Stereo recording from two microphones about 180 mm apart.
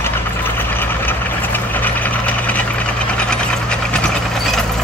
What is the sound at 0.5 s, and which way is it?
Vehicle, 10° left (ahead or behind).